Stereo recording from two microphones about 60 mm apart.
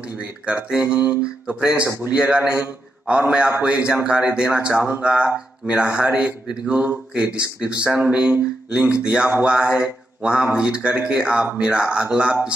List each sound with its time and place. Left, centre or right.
0.7 s speech: right
1.2 s speech: centre